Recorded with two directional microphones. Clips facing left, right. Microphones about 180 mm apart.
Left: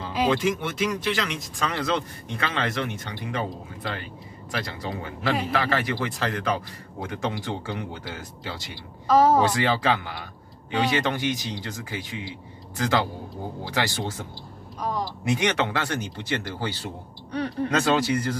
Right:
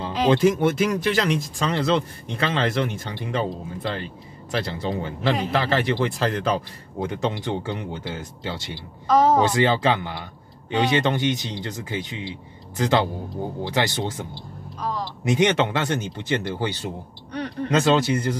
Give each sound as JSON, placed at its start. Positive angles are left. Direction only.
{"t": 0.3, "sound": "speech", "side_deg": -40}
{"t": 9.0, "sound": "a woman's voice", "side_deg": 5}
{"t": 9.4, "sound": "speech", "side_deg": -25}
{"t": 15.2, "sound": "speech", "side_deg": -20}